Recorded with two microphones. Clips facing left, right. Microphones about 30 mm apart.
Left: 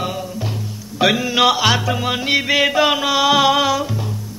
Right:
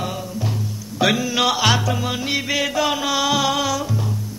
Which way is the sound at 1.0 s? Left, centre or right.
Centre.